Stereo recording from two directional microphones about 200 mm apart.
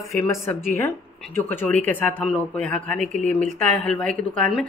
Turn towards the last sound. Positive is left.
turn(degrees=0)  # may be behind; listen again after turning